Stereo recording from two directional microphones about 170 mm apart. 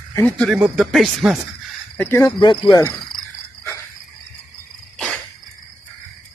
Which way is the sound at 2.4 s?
30° left (ahead or behind).